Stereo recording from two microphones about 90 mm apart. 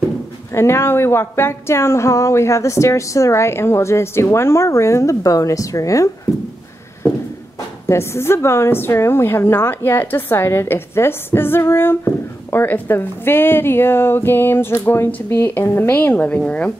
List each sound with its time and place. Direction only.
0.6 s speech: 30° left (ahead or behind)
7.9 s a woman's voice: 30° left (ahead or behind); by 16.7 s 15° left (ahead or behind)